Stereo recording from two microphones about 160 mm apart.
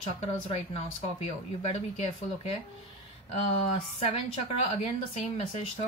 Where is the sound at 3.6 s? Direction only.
35° left (ahead or behind).